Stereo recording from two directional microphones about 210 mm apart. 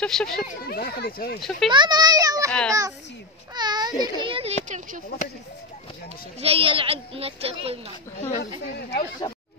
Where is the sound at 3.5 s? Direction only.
20° right (ahead or behind).